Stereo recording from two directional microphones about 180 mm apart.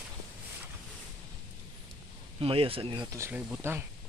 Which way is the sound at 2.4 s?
30° right (ahead or behind).